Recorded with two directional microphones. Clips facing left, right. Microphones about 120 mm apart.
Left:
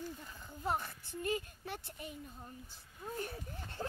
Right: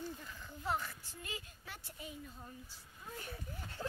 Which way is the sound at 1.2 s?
50° left (ahead or behind).